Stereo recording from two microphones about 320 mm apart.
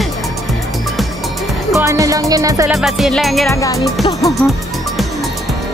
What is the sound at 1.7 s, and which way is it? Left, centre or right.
Music, centre.